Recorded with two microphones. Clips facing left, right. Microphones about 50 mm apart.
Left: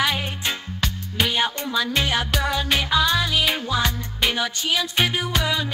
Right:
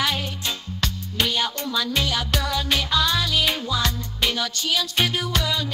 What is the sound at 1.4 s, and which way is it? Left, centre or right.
Music, left.